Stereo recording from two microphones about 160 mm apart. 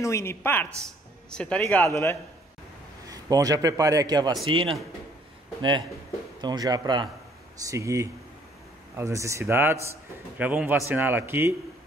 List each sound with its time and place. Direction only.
0.0 s a woman's voice: 15° left (ahead or behind)
3.1 s a man's voice: 20° right (ahead or behind)